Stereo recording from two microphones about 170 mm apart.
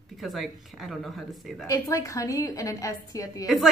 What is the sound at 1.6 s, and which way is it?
A woman's voice, 20° left (ahead or behind).